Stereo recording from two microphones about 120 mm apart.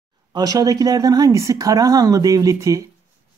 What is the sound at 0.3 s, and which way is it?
Speech, 30° right (ahead or behind).